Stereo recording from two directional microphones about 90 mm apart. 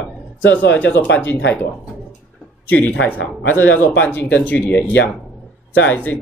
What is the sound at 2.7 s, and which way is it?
A man's voice, 20° left (ahead or behind).